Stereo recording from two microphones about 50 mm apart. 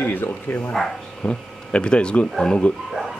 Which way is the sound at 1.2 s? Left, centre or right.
Left.